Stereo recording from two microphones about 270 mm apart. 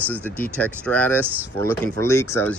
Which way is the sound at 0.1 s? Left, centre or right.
Centre.